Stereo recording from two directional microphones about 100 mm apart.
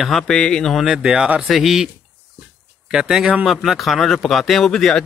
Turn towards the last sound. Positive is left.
turn(degrees=5)  # may be behind; listen again after turning